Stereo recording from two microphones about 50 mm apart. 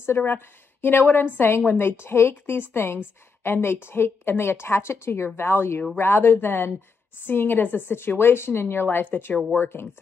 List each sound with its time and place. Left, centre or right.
0.2 s a woman's voice: left
8.8 s a woman's voice: left